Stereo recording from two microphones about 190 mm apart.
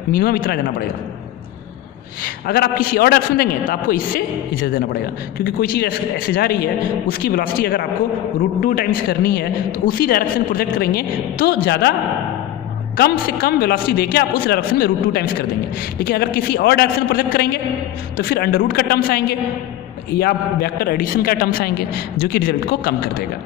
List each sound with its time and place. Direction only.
0.1 s speech: 50° left (ahead or behind)
2.2 s speech: 55° left (ahead or behind)
12.9 s speech: 55° left (ahead or behind)